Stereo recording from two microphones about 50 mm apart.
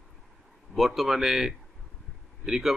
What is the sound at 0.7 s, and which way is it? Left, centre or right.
Speech, centre.